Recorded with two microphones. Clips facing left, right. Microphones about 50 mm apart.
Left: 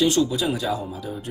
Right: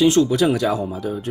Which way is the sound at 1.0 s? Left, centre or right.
Right.